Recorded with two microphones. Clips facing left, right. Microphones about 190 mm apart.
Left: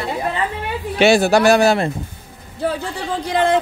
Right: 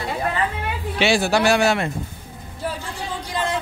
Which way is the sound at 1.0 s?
45° left (ahead or behind).